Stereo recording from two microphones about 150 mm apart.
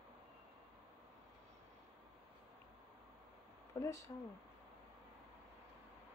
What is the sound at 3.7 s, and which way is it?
Speech, 20° left (ahead or behind).